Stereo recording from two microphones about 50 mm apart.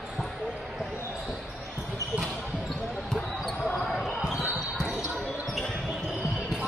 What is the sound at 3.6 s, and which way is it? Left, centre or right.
Basketball bounce, centre.